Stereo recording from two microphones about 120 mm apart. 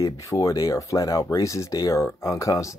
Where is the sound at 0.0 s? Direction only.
25° left (ahead or behind).